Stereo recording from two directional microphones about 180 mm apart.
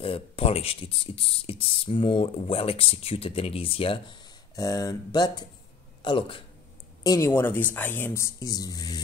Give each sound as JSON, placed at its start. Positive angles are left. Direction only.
{"t": 0.0, "sound": "speech", "side_deg": 30}
{"t": 7.0, "sound": "speech", "side_deg": 20}